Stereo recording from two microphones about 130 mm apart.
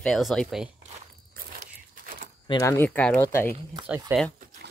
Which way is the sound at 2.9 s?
10° left (ahead or behind).